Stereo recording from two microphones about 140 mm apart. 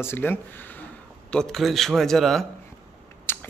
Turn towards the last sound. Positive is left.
turn(degrees=15)  # may be behind; listen again after turning